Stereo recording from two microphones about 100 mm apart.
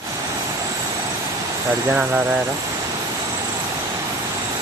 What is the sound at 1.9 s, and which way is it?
Speech, 15° right (ahead or behind).